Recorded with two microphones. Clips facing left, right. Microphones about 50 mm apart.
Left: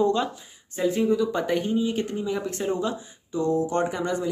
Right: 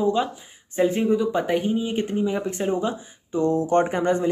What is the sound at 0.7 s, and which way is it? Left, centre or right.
Speech, right.